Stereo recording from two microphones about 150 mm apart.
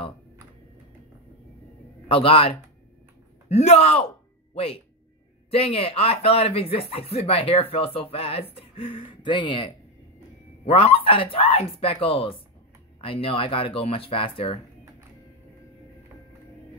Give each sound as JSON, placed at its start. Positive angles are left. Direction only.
{"t": 2.0, "sound": "speech", "side_deg": 35}
{"t": 5.5, "sound": "speech", "side_deg": 40}